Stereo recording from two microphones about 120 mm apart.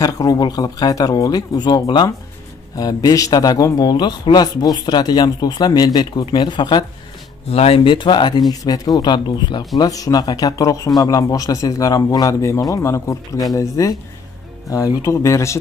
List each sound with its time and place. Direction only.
0.0 s a man's voice: 30° left (ahead or behind)
7.4 s a man's voice: 55° left (ahead or behind); by 13.9 s 30° left (ahead or behind)
15.0 s speech: 25° left (ahead or behind)